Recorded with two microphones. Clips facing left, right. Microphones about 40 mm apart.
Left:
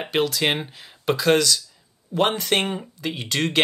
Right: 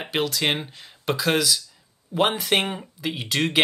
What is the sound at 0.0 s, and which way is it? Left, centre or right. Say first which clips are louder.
Speech: left 2 dB; centre.